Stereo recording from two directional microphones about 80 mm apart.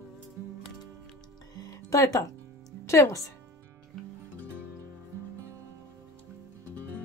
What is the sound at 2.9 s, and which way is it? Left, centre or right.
Speech, left.